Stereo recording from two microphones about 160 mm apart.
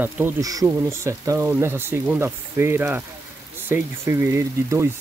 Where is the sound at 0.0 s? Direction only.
20° right (ahead or behind).